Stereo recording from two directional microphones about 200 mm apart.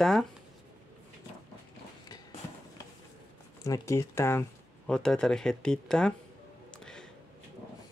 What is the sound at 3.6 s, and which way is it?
Speech, 15° left (ahead or behind).